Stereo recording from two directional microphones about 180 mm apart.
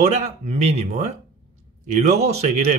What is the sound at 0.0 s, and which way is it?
Speech, 40° right (ahead or behind).